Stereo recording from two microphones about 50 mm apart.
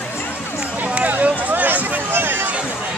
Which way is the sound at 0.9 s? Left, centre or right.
Right.